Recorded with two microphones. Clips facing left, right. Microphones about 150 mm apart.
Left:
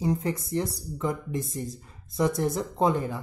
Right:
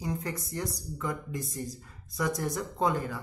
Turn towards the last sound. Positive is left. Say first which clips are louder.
# left 4 dB
turn(degrees=25)  # may be behind; listen again after turning